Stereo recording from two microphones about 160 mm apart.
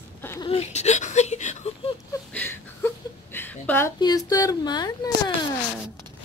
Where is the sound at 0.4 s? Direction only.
40° left (ahead or behind).